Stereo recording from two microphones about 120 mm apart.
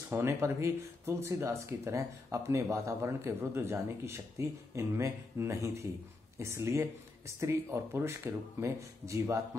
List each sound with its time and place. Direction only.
0.1 s speech: 20° right (ahead or behind)